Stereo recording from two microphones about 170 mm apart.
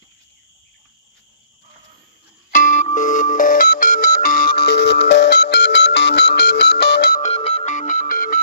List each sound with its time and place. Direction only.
2.5 s music: 45° left (ahead or behind); by 7.2 s 70° left (ahead or behind)
7.2 s music: 40° left (ahead or behind)